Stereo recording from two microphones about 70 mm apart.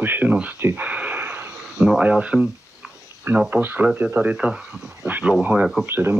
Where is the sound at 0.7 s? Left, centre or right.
Right.